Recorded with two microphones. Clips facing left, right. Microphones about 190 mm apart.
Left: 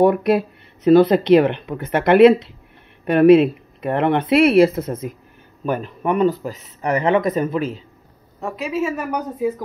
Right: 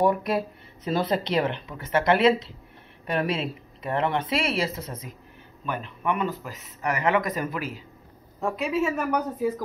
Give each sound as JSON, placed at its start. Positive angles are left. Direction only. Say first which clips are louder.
{"t": 0.0, "sound": "speech", "louder": "left 8 dB", "side_deg": 70}
{"t": 5.7, "sound": "speech", "louder": "left 7 dB", "side_deg": 40}
{"t": 8.4, "sound": "a woman's voice", "louder": "left 2 dB", "side_deg": 0}